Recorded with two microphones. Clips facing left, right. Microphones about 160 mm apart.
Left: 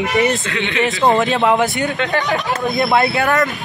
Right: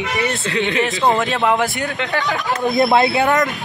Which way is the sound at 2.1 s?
20° left (ahead or behind).